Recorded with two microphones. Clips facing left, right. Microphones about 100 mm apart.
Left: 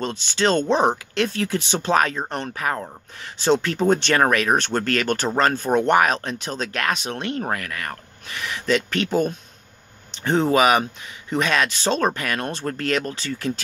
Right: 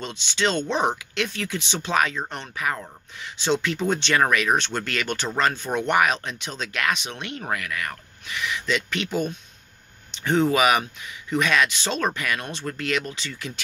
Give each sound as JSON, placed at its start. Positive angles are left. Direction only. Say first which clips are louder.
{"t": 0.0, "sound": "speech", "louder": "left 4 dB", "side_deg": 45}